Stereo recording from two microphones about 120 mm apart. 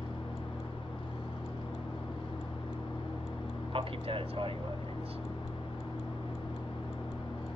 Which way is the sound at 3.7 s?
50° right (ahead or behind).